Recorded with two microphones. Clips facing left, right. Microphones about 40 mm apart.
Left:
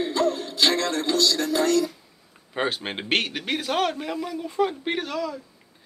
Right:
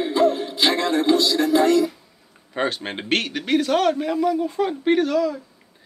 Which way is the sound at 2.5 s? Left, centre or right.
Centre.